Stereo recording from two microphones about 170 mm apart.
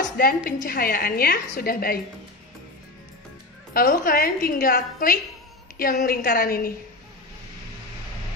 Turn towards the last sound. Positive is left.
turn(degrees=60)  # may be behind; listen again after turning